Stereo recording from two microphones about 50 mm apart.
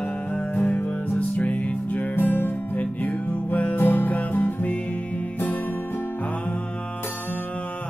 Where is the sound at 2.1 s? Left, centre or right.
Left.